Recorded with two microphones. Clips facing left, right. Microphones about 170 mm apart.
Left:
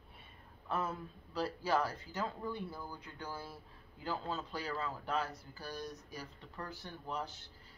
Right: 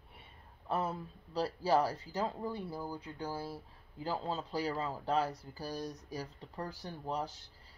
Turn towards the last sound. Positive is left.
turn(degrees=-35)  # may be behind; listen again after turning